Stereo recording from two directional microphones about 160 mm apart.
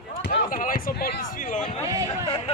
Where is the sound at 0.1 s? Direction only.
55° left (ahead or behind).